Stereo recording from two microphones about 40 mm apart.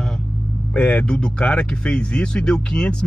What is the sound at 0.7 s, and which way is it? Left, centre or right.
Speech, left.